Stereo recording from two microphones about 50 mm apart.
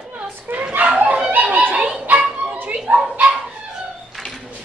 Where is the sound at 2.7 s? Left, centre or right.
Centre.